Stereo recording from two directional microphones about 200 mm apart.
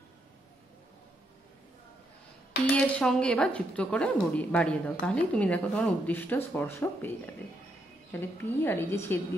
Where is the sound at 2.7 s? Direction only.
5° left (ahead or behind).